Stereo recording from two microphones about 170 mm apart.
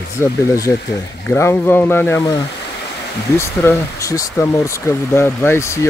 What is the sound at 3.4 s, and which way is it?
Speech, 15° left (ahead or behind).